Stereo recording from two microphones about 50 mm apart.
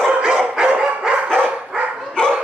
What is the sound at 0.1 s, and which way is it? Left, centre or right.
Dog, centre.